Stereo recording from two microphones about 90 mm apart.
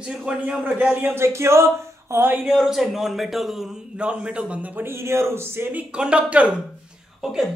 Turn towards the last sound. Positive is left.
turn(degrees=-5)  # may be behind; listen again after turning